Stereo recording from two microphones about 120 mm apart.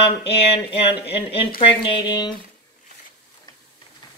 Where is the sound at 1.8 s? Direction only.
45° left (ahead or behind).